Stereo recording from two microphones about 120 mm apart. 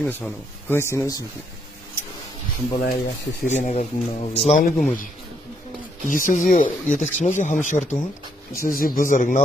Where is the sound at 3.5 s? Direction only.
75° left (ahead or behind).